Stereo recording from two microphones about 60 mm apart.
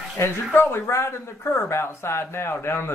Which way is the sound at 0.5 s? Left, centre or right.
Left.